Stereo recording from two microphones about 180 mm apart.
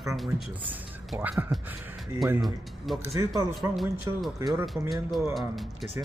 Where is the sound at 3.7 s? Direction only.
Centre (ahead or behind).